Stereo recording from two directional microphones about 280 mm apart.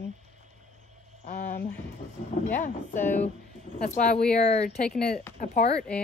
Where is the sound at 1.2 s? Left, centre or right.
Left.